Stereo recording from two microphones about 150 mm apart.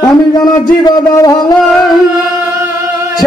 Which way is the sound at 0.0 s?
25° left (ahead or behind).